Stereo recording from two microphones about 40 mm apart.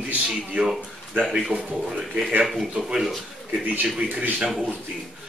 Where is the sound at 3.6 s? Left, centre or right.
Right.